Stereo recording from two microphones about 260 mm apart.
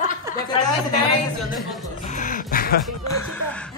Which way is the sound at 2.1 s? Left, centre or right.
Left.